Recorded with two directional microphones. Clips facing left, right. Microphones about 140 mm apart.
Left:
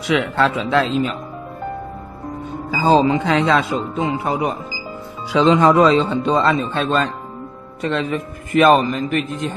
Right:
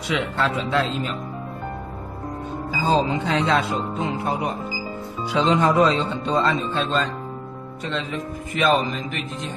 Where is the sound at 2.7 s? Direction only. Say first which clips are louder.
Left 6 dB; 75° left (ahead or behind); by 3.5 s 90° left.